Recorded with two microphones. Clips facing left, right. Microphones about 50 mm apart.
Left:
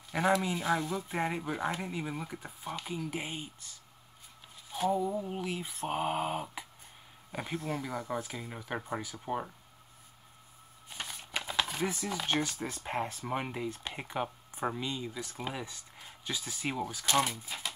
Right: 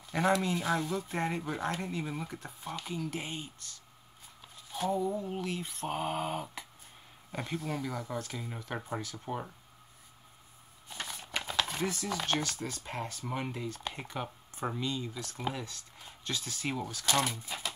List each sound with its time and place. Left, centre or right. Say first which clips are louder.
0.1 s speech: even; centre
10.9 s a sound: right 1 dB; centre
12.8 s speech: left 4 dB; centre